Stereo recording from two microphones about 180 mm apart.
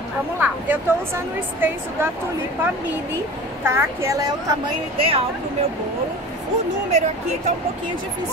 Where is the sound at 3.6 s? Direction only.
15° right (ahead or behind).